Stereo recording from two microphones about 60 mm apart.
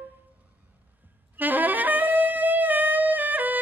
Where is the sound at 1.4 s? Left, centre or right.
Right.